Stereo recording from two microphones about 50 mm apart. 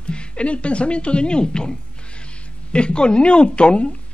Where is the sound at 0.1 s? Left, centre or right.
Left.